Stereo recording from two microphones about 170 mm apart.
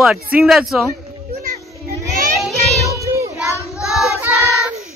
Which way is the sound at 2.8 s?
20° right (ahead or behind).